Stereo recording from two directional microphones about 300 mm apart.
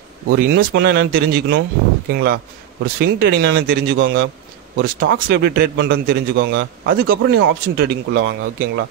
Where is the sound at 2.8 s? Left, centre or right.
Right.